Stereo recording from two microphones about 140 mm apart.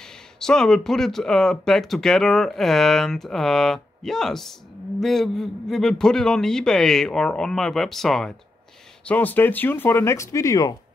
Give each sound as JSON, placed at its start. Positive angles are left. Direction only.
{"t": 0.0, "sound": "speech", "side_deg": 5}